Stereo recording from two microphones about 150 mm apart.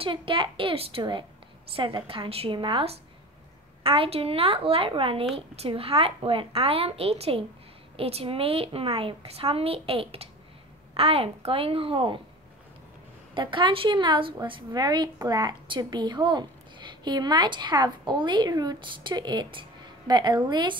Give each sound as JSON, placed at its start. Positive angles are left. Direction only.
{"t": 0.0, "sound": "a woman's voice", "side_deg": -35}
{"t": 13.3, "sound": "a woman's voice", "side_deg": -35}